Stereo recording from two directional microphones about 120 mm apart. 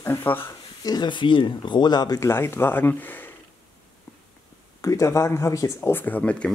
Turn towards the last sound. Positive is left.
turn(degrees=10)  # may be behind; listen again after turning